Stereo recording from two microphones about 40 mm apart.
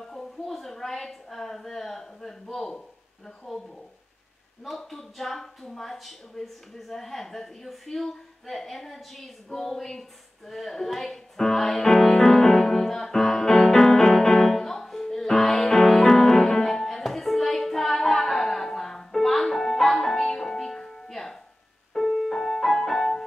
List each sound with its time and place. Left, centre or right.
0.0 s a woman's voice: centre
4.6 s speech: centre
5.9 s a sound: centre
21.9 s music: centre